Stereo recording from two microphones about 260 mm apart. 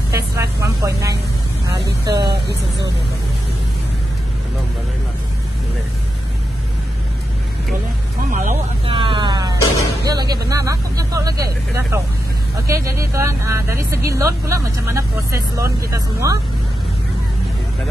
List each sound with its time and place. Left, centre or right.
0.1 s speech: centre
8.2 s speech: right; by 16.3 s centre